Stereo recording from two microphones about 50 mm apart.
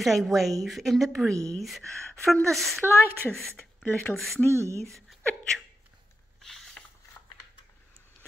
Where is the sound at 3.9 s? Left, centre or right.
Left.